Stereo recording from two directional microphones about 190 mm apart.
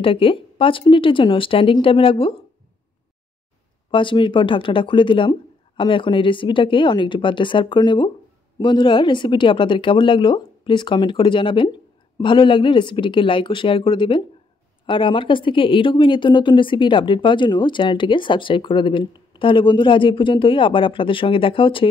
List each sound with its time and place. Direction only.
0.0 s speech: 30° left (ahead or behind)
3.9 s speech: 25° left (ahead or behind)